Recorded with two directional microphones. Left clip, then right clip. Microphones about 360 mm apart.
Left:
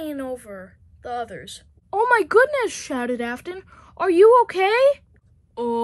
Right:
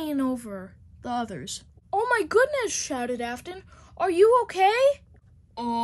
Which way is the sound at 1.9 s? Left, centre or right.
Centre.